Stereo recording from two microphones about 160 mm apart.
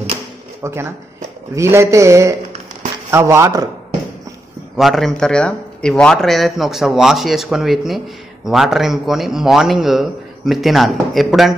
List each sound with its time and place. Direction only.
0.6 s a man's voice: 15° right (ahead or behind)
4.7 s speech: centre (ahead or behind)